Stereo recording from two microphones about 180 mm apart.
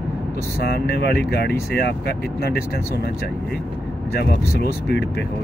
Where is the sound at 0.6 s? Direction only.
65° left (ahead or behind).